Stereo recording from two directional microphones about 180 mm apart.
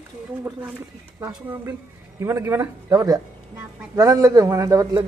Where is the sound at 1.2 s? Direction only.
15° right (ahead or behind).